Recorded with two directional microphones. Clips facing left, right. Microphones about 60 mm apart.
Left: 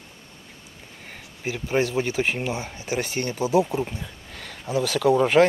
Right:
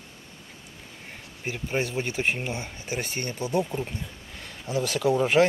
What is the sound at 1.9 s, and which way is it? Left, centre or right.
Speech, centre.